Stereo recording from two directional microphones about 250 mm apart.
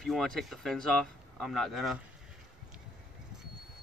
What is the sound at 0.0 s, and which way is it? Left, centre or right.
Speech, centre.